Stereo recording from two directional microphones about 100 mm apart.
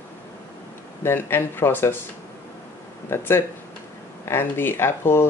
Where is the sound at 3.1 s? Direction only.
25° left (ahead or behind).